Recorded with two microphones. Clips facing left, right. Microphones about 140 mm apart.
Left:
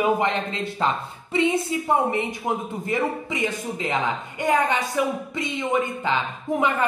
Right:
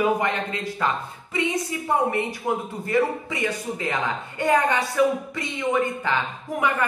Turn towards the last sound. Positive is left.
turn(degrees=20)  # may be behind; listen again after turning